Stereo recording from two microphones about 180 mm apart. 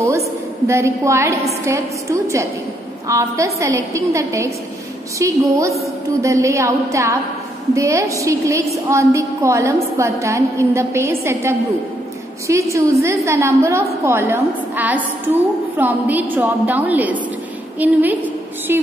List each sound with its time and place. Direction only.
0.7 s a woman's voice: 15° right (ahead or behind)